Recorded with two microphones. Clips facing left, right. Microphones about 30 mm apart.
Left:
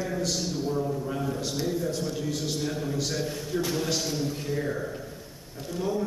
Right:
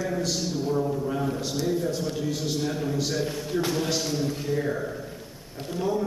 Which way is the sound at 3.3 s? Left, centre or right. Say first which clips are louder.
Right 2 dB; centre.